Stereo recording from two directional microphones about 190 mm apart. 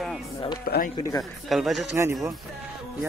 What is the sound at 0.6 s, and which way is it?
Speech, 50° left (ahead or behind).